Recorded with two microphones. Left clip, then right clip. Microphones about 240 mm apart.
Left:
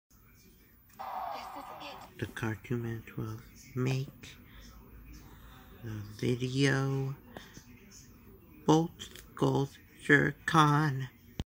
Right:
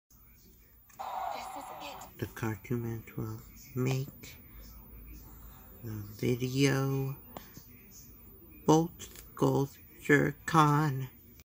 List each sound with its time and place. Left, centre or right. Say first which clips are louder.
0.9 s radio: right 1 dB; right
2.1 s speech: left 1 dB; centre
6.1 s speech: right 1 dB; centre
8.6 s speech: right 1 dB; centre